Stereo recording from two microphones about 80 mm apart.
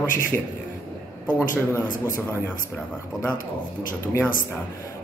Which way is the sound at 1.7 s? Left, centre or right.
Left.